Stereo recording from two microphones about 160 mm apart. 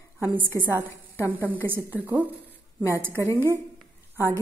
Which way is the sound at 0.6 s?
15° right (ahead or behind).